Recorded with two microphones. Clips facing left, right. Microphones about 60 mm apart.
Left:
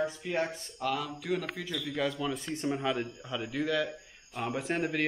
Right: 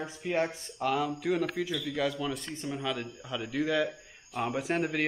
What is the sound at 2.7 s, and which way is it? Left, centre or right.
Speech, left.